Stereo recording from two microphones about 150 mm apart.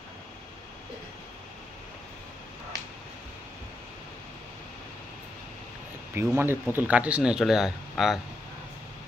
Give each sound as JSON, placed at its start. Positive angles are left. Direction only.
{"t": 6.1, "sound": "speech", "side_deg": -15}